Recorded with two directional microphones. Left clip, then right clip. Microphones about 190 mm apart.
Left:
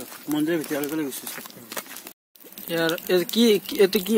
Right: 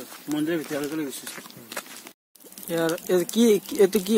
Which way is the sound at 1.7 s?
35° left (ahead or behind).